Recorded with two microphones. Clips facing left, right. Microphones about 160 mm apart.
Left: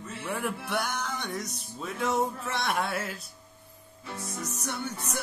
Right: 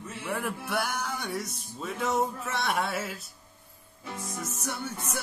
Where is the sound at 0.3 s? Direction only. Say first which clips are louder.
Even; centre (ahead or behind).